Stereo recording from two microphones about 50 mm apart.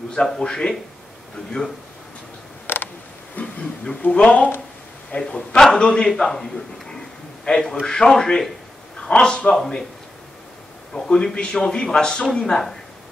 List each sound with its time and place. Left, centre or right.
0.1 s a man's voice: centre
2.6 s mechanisms: left
3.4 s a sound: left
4.1 s speech: left
5.1 s a man's voice: left
5.6 s a man's voice: centre
10.9 s a man's voice: centre